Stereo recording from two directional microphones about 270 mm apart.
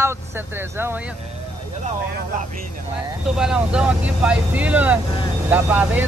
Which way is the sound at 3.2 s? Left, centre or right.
Centre.